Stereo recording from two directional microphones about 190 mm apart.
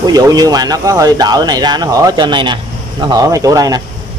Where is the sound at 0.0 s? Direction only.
20° right (ahead or behind).